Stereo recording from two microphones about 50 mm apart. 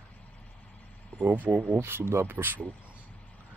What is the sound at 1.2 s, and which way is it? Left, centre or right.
Speech, right.